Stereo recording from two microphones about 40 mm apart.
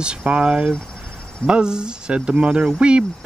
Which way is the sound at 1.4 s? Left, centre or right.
Right.